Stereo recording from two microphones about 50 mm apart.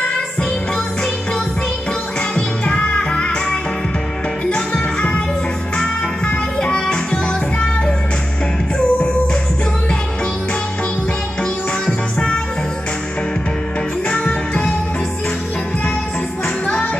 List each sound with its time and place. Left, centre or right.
2.3 s music: left
11.8 s music: centre